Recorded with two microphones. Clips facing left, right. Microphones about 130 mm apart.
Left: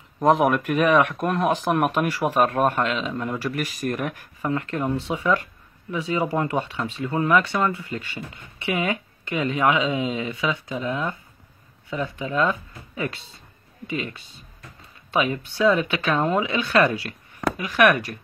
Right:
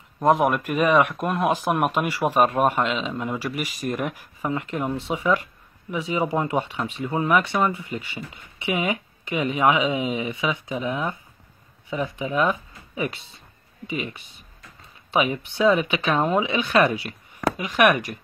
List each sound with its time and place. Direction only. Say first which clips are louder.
0.2 s speech: left 1 dB; 5° right (ahead or behind)